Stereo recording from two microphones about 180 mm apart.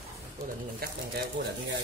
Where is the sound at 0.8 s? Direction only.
55° right (ahead or behind).